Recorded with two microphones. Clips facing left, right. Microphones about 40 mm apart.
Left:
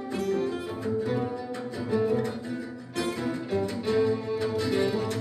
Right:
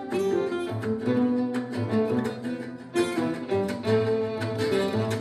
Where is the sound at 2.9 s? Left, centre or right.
Right.